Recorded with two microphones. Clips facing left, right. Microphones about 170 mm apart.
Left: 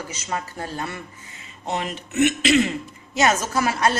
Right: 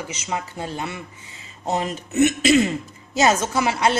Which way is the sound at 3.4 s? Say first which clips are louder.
Right 1 dB; 20° right (ahead or behind).